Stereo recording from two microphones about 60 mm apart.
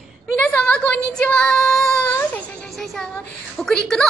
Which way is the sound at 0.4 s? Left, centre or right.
Left.